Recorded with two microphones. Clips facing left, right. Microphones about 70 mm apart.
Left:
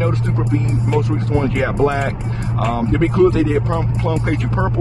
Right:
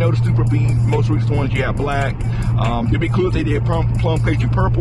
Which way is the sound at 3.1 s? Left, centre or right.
Centre.